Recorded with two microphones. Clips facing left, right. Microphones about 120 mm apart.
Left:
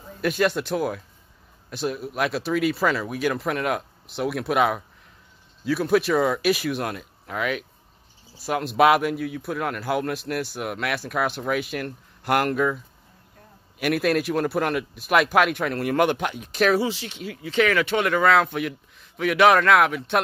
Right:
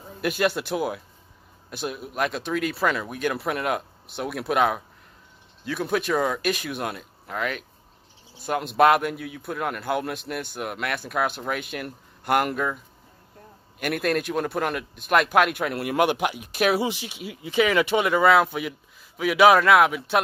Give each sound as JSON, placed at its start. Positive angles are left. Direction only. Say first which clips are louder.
{"t": 0.2, "sound": "speech", "louder": "left 2 dB", "side_deg": 0}
{"t": 13.7, "sound": "speech", "louder": "left 3 dB", "side_deg": 0}